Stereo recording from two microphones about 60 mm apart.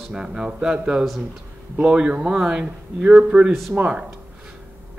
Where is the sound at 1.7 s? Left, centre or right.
Centre.